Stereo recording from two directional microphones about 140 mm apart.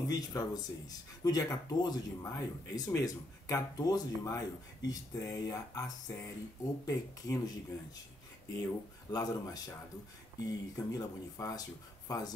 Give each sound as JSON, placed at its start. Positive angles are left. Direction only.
{"t": 0.1, "sound": "speech", "side_deg": 25}
{"t": 9.1, "sound": "speech", "side_deg": 25}